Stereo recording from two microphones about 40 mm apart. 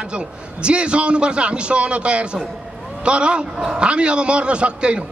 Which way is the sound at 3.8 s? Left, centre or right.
Right.